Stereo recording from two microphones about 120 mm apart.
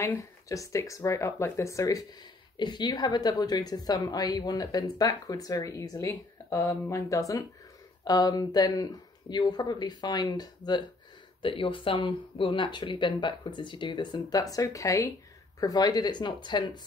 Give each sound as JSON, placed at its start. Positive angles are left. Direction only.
{"t": 0.0, "sound": "a woman's voice", "side_deg": 20}
{"t": 11.4, "sound": "a woman's voice", "side_deg": 45}